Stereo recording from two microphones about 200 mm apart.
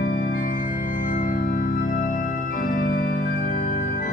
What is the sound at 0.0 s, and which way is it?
Organ, 45° left (ahead or behind).